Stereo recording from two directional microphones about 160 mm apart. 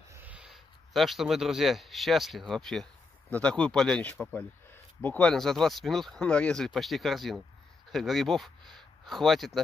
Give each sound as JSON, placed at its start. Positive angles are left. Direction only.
{"t": 0.1, "sound": "speech", "side_deg": -10}